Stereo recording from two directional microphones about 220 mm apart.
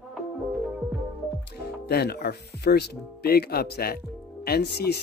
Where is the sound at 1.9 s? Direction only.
45° left (ahead or behind).